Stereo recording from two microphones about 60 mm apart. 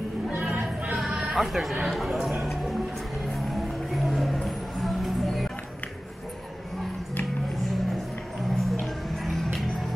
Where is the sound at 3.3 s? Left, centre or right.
Centre.